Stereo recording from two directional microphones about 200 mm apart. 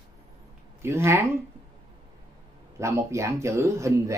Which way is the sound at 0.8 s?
15° right (ahead or behind).